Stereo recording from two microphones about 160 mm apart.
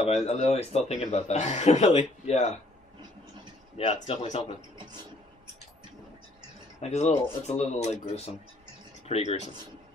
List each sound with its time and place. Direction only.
0.0 s speech: 40° left (ahead or behind)
3.7 s speech: 40° left (ahead or behind)
6.8 s speech: 45° left (ahead or behind)